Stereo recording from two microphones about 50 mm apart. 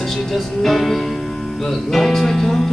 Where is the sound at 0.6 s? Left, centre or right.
Centre.